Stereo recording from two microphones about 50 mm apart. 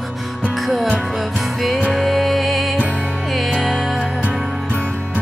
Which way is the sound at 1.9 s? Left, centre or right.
Centre.